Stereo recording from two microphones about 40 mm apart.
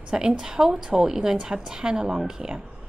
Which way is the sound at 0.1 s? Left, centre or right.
Centre.